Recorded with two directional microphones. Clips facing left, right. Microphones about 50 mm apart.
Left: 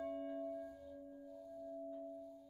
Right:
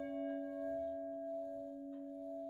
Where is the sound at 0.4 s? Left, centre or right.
Right.